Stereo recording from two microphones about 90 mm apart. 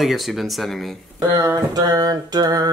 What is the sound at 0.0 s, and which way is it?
Speech, centre (ahead or behind).